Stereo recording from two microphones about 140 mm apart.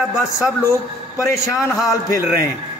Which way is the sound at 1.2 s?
20° left (ahead or behind).